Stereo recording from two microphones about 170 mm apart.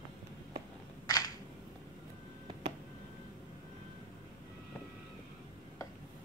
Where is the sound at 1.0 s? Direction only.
20° left (ahead or behind).